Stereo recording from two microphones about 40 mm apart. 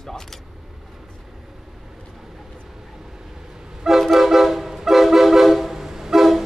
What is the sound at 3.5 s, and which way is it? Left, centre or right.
Vehicle, centre.